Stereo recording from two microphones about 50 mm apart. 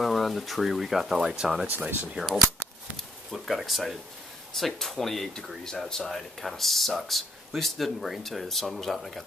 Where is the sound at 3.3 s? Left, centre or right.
Centre.